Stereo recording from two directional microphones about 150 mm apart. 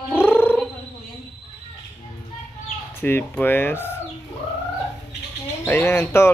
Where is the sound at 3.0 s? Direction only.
15° left (ahead or behind).